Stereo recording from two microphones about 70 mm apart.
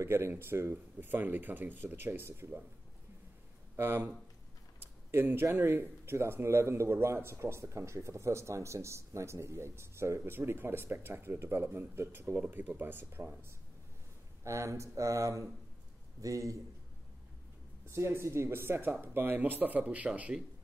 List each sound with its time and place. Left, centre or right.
0.0 s a man's voice: right
3.7 s a man's voice: right
5.1 s a man's voice: right
14.4 s a man's voice: right
17.8 s a man's voice: right